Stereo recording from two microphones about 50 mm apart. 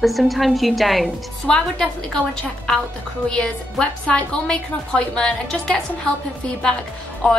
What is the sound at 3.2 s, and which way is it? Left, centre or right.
A woman's voice, centre.